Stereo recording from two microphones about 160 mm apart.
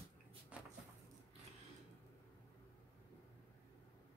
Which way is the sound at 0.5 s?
10° right (ahead or behind).